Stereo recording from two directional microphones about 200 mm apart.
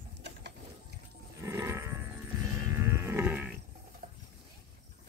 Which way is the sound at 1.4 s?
15° right (ahead or behind).